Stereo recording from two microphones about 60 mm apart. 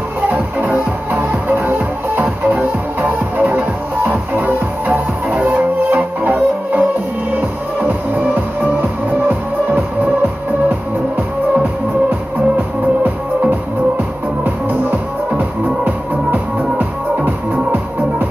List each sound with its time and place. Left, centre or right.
0.3 s music: right
9.3 s music: right
12.5 s music: right